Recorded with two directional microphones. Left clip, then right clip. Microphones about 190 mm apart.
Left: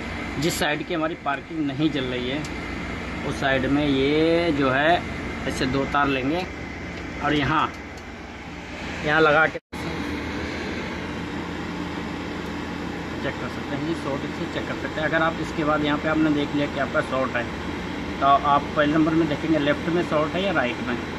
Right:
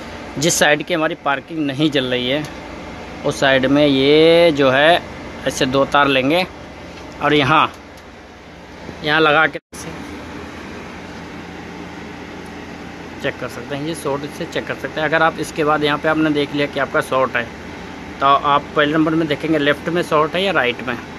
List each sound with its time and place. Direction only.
0.4 s speech: 45° right (ahead or behind)
7.2 s speech: 55° right (ahead or behind)
9.0 s speech: 40° right (ahead or behind)
15.0 s speech: 60° right (ahead or behind)